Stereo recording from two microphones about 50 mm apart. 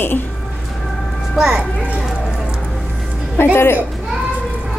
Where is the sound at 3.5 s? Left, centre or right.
Left.